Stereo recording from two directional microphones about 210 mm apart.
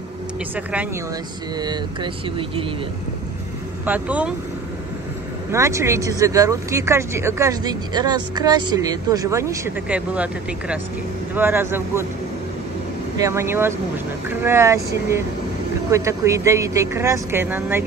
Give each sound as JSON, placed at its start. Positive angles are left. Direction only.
{"t": 1.6, "sound": "speech", "side_deg": -20}
{"t": 3.8, "sound": "speech", "side_deg": -5}
{"t": 5.5, "sound": "speech", "side_deg": -15}
{"t": 13.2, "sound": "speech", "side_deg": -10}